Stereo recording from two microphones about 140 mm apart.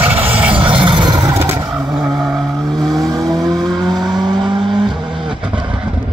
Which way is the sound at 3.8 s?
30° right (ahead or behind).